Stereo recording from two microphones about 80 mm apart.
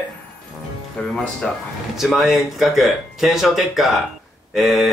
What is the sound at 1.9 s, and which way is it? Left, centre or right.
Speech, centre.